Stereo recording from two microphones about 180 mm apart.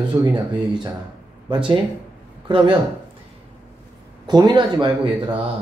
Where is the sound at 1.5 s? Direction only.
25° right (ahead or behind).